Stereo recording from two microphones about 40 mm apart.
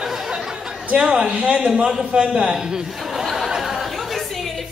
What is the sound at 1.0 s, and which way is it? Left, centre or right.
A man's voice, centre.